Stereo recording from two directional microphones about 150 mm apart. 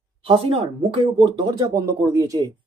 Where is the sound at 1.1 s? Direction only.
30° right (ahead or behind).